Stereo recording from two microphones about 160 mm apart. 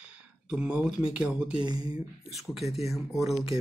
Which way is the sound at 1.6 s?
25° right (ahead or behind).